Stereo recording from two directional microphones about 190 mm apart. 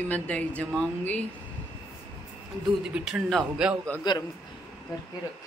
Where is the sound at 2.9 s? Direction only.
5° right (ahead or behind).